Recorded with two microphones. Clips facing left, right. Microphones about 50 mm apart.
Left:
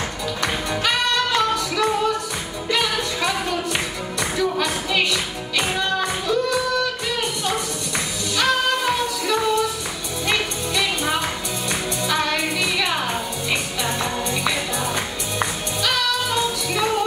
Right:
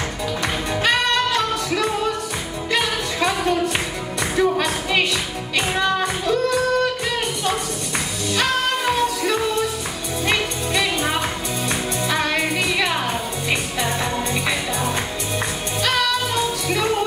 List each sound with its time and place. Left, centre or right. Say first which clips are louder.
0.7 s music: right 3 dB; right
4.2 s music: right 3 dB; centre
10.2 s music: right 1 dB; right
12.5 s music: right 1 dB; right